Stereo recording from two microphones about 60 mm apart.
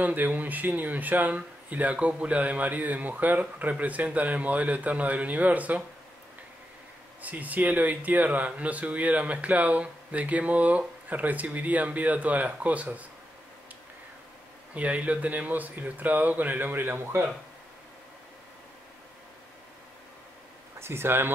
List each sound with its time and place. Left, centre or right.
0.0 s speech: right
7.2 s speech: right
14.7 s speech: right
20.8 s speech: right